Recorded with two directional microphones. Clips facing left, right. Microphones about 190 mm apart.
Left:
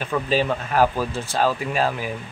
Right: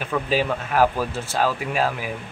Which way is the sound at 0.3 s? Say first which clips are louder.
Left 1 dB; 5° right (ahead or behind).